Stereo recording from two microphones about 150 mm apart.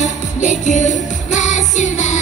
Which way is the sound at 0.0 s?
55° left (ahead or behind).